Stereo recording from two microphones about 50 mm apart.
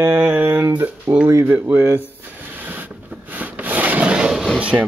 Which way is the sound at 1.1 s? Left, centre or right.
Right.